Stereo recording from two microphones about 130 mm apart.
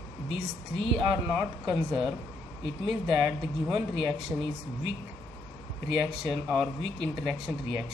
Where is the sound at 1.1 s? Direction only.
5° right (ahead or behind).